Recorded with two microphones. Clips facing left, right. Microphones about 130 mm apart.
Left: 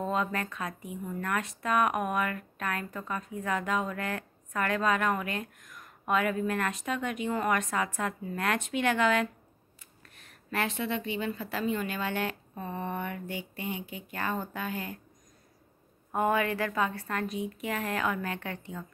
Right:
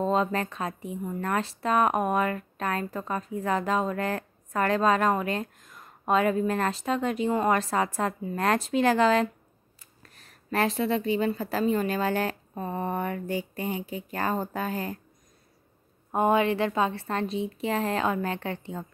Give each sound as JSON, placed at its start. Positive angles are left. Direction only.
{"t": 0.0, "sound": "speech", "side_deg": -30}
{"t": 16.1, "sound": "a woman's voice", "side_deg": -25}